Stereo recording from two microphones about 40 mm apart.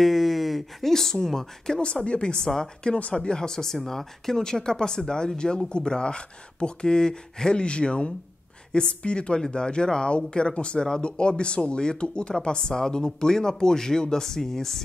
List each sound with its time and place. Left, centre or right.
0.0 s speech: centre
2.0 s speech: left